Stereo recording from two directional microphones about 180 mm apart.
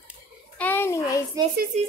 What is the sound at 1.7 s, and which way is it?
Speech, 40° right (ahead or behind).